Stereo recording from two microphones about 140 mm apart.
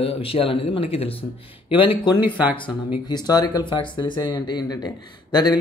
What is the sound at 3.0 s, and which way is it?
Speech, 30° left (ahead or behind).